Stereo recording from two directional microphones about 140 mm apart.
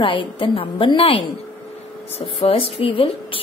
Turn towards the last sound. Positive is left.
turn(degrees=40)  # may be behind; listen again after turning